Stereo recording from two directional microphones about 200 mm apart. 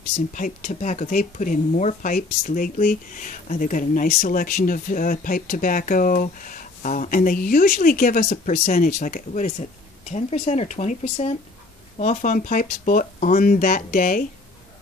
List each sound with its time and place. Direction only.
0.3 s speech: 40° left (ahead or behind)